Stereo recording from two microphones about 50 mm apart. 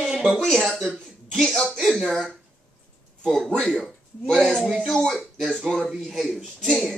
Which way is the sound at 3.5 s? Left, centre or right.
Centre.